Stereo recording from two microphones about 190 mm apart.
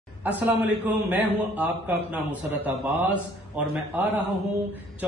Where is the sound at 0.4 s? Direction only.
10° right (ahead or behind).